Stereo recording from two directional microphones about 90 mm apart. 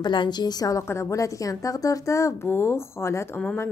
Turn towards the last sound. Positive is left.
turn(degrees=25)  # may be behind; listen again after turning